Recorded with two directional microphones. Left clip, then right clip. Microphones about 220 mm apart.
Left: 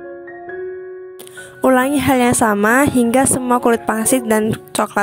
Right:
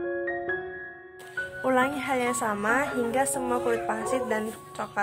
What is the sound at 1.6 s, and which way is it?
A woman's voice, 45° left (ahead or behind).